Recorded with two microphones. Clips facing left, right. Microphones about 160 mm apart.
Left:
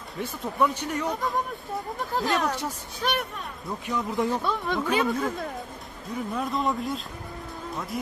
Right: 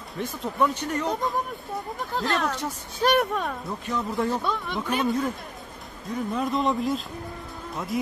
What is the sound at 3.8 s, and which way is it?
Speech, 15° left (ahead or behind).